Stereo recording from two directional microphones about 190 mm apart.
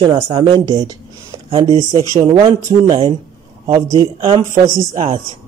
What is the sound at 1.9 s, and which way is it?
A man's voice, 20° right (ahead or behind).